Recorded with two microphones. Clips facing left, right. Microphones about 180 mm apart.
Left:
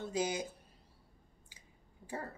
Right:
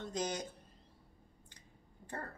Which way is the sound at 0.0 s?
5° left (ahead or behind).